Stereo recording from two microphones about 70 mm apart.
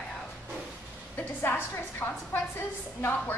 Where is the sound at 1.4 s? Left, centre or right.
Left.